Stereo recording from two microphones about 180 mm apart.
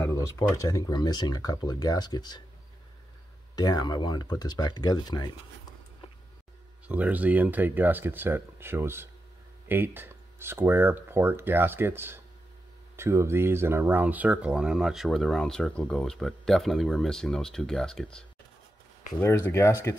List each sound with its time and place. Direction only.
0.0 s speech: 15° left (ahead or behind)
3.5 s speech: 20° left (ahead or behind)
6.9 s speech: 10° right (ahead or behind)
19.2 s speech: 15° left (ahead or behind)